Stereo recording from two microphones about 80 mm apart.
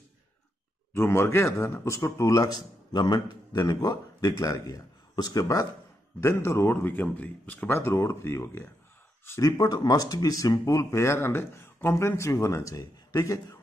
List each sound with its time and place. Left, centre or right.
0.9 s speech: left
2.9 s a man's voice: left
6.2 s speech: left
9.4 s speech: left